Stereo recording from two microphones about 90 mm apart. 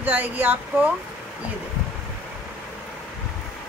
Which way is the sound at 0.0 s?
20° right (ahead or behind).